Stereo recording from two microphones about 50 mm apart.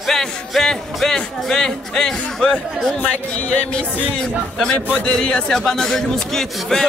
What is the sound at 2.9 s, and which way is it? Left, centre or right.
Speech, left.